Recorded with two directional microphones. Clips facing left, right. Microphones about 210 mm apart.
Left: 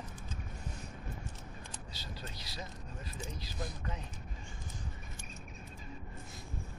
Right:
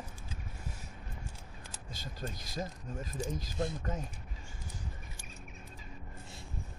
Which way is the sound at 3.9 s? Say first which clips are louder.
Right 6 dB; 45° right (ahead or behind).